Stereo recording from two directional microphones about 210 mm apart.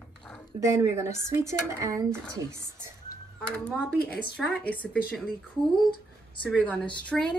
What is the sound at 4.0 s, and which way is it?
Speech, 45° left (ahead or behind).